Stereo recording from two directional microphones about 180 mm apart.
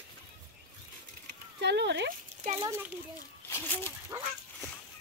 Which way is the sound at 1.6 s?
70° right (ahead or behind).